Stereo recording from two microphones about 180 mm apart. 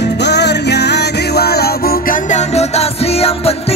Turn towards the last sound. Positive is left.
turn(degrees=35)  # may be behind; listen again after turning